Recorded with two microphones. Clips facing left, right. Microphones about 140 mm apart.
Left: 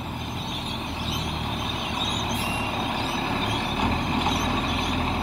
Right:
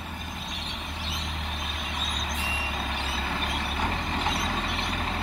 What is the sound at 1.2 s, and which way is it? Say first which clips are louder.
Vehicle: left 6 dB; 20° left (ahead or behind).